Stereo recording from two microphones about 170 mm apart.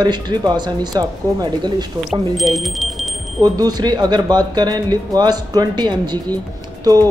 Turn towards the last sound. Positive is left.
turn(degrees=-20)  # may be behind; listen again after turning